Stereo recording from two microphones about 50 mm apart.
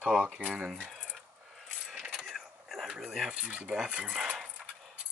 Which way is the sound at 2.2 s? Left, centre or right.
Centre.